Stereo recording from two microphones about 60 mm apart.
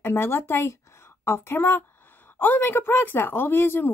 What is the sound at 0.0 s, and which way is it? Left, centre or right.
A woman's voice, left.